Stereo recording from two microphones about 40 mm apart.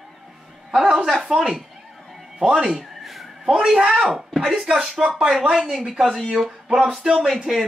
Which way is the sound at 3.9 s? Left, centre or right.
Centre.